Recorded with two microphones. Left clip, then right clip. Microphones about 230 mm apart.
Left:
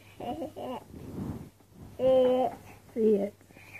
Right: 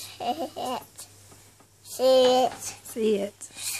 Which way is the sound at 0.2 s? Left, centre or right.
Right.